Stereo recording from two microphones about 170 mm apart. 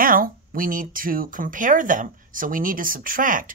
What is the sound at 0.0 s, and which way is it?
Speech, 55° right (ahead or behind).